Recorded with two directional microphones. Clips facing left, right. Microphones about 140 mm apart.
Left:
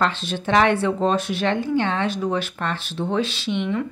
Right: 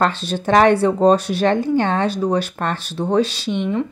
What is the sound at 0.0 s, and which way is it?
Speech, 40° right (ahead or behind).